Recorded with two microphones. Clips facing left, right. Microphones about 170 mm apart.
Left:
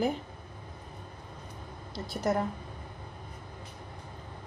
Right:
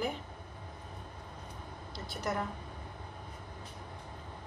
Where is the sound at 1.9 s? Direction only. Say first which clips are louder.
Left 7 dB; 40° left (ahead or behind).